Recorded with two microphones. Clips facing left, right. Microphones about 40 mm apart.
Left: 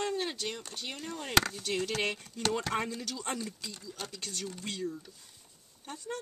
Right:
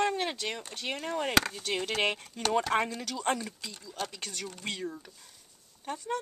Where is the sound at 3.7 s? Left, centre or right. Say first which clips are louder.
Right 5 dB; centre.